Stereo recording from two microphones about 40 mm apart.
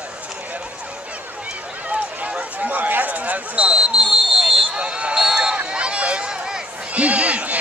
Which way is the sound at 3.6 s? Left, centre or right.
Right.